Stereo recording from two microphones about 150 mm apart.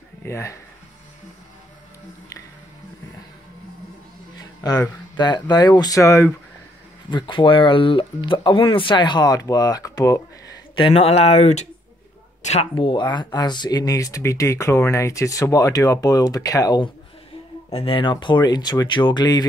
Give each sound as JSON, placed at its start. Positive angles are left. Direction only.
{"t": 0.2, "sound": "speech", "side_deg": 20}
{"t": 4.4, "sound": "speech", "side_deg": 25}
{"t": 7.1, "sound": "speech", "side_deg": 30}
{"t": 10.8, "sound": "speech", "side_deg": 40}
{"t": 12.7, "sound": "speech", "side_deg": 35}
{"t": 17.7, "sound": "speech", "side_deg": 35}